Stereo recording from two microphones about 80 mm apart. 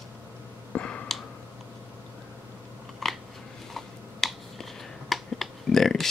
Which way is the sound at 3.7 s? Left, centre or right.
Centre.